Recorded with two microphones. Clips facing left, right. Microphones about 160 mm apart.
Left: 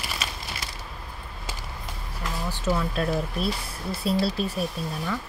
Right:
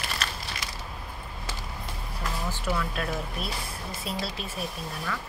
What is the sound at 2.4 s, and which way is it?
Speech, 20° left (ahead or behind).